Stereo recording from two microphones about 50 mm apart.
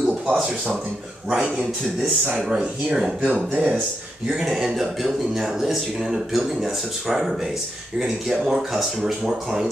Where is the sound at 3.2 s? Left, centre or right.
Right.